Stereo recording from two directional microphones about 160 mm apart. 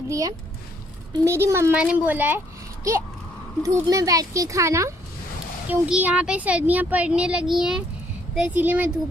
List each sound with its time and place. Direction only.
1.1 s a child's voice: 15° right (ahead or behind)